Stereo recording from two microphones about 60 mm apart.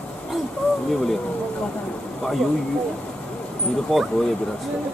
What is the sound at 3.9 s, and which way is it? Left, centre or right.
Speech, centre.